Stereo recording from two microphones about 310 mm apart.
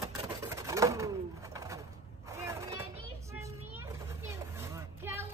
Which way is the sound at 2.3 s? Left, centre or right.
Centre.